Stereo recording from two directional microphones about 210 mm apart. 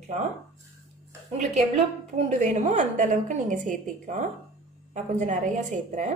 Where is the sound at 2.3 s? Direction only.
35° right (ahead or behind).